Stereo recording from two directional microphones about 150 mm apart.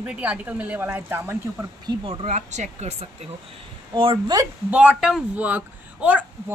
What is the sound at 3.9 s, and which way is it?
Speech, 35° right (ahead or behind).